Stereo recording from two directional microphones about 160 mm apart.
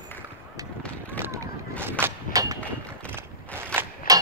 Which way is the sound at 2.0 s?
20° right (ahead or behind).